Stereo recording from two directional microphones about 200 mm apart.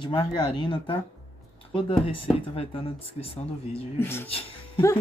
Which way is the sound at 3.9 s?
10° left (ahead or behind).